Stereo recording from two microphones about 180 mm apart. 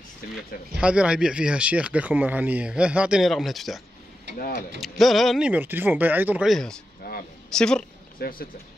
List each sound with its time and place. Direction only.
0.7 s speech: 5° right (ahead or behind)
4.4 s speech: 50° left (ahead or behind)
4.7 s speech: centre (ahead or behind)
7.0 s a sound: 60° left (ahead or behind)
7.5 s speech: 5° left (ahead or behind)
8.2 s speech: 55° left (ahead or behind)